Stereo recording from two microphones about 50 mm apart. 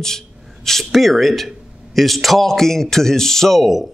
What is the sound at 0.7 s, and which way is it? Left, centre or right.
A man's voice, centre.